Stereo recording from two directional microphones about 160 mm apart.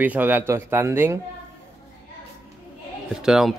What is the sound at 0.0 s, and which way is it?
Speech, 10° right (ahead or behind).